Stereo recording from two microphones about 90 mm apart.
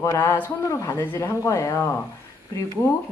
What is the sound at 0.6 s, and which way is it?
A woman's voice, 35° left (ahead or behind).